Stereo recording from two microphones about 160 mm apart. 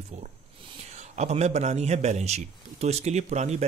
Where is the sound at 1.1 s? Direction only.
45° right (ahead or behind).